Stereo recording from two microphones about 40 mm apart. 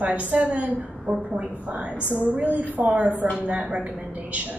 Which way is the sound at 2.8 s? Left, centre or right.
Right.